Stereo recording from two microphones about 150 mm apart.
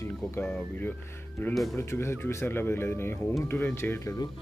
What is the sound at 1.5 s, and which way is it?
Speech, centre (ahead or behind).